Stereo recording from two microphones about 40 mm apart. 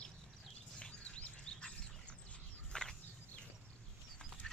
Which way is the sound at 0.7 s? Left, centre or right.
Left.